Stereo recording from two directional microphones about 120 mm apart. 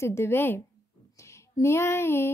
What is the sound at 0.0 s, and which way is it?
A woman's voice, 20° left (ahead or behind).